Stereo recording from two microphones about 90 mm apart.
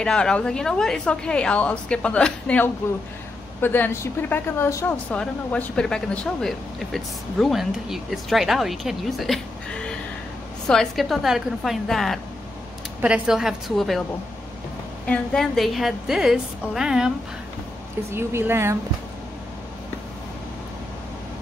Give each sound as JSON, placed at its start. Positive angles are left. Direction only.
{"t": 0.0, "sound": "a woman's voice", "side_deg": 10}
{"t": 2.8, "sound": "a woman's voice", "side_deg": 25}
{"t": 10.7, "sound": "speech", "side_deg": 0}
{"t": 13.0, "sound": "speech", "side_deg": -10}
{"t": 15.0, "sound": "speech", "side_deg": 5}
{"t": 18.1, "sound": "speech", "side_deg": -30}